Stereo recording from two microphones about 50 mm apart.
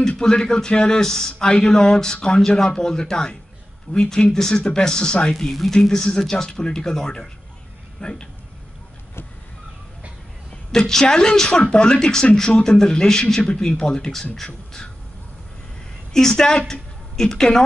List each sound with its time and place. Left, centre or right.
0.2 s speech: centre
5.3 s speech: centre
10.7 s speech: centre
16.1 s speech: centre